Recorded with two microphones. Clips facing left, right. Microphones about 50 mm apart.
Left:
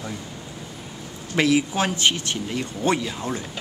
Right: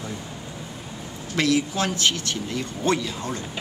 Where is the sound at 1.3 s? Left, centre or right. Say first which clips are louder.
Left 2 dB; centre.